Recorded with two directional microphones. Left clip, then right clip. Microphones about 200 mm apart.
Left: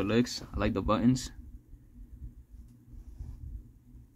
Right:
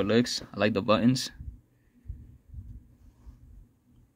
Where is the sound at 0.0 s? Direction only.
25° right (ahead or behind).